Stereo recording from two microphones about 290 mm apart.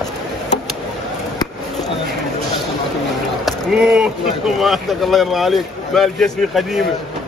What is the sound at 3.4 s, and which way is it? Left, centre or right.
Speech, centre.